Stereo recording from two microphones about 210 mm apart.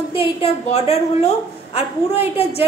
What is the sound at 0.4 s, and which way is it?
A woman's voice, 30° left (ahead or behind).